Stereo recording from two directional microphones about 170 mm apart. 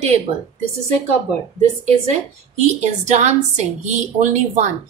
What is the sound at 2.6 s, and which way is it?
A woman's voice, 40° right (ahead or behind).